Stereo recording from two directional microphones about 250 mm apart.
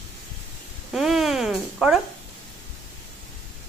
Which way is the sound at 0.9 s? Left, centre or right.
Centre.